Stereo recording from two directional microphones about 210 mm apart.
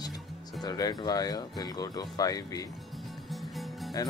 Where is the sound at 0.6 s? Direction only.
20° left (ahead or behind).